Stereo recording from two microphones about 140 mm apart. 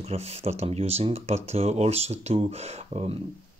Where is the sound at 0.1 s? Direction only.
50° right (ahead or behind).